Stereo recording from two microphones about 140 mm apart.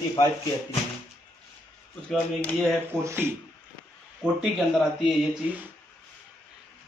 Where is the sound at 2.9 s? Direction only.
20° right (ahead or behind).